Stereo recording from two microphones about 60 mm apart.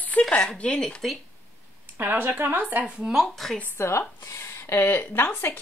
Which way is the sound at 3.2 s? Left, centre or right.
Centre.